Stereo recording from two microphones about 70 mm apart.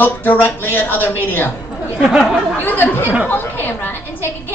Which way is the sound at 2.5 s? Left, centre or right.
Left.